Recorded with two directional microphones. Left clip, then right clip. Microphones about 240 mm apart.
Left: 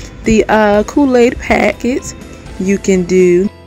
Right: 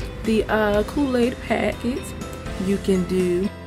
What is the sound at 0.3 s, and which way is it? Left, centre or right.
Speech, left.